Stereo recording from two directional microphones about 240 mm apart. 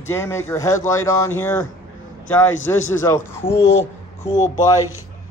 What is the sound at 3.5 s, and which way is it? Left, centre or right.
Speech, left.